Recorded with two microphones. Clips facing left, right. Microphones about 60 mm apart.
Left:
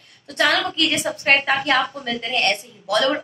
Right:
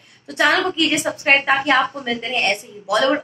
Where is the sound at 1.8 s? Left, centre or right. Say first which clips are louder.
Right 3 dB; right.